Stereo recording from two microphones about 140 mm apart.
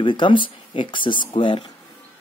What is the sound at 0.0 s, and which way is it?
Speech, 35° left (ahead or behind).